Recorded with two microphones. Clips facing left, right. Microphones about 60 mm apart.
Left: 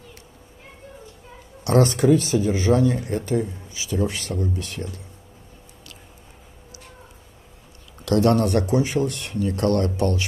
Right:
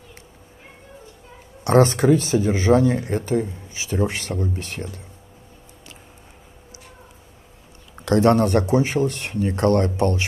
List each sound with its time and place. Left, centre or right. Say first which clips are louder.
1.6 s speech: right 2 dB; right
8.0 s speech: right 2 dB; right